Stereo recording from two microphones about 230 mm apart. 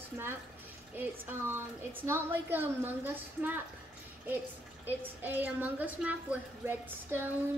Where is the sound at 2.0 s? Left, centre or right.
Centre.